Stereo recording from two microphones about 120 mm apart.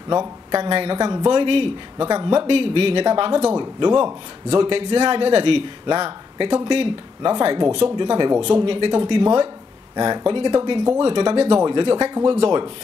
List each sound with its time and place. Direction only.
0.1 s speech: 40° right (ahead or behind)
0.6 s a man's voice: 50° right (ahead or behind)
2.0 s a man's voice: 40° right (ahead or behind)